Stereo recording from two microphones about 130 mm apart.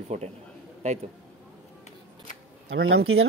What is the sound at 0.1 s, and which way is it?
Speech, 65° right (ahead or behind).